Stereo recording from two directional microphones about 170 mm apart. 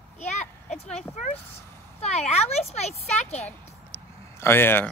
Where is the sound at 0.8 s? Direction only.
40° left (ahead or behind).